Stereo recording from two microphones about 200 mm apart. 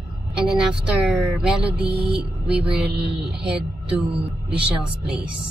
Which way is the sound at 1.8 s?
55° right (ahead or behind).